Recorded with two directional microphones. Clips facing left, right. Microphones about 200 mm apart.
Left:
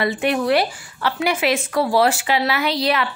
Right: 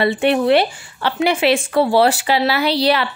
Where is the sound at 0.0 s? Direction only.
30° right (ahead or behind).